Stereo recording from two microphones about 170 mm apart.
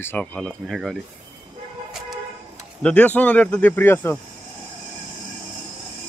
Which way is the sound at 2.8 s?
5° left (ahead or behind).